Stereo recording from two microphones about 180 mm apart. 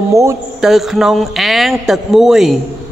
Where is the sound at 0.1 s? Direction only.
15° right (ahead or behind).